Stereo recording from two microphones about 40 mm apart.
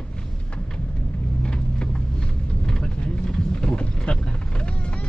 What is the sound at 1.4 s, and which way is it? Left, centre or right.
Vehicle, left.